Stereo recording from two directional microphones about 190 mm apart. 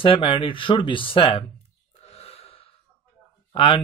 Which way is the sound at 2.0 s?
35° left (ahead or behind).